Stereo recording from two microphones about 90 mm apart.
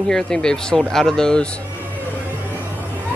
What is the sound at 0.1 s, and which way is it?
Speech, 5° left (ahead or behind).